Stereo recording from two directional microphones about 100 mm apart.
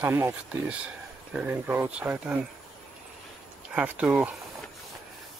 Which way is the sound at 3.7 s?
15° right (ahead or behind).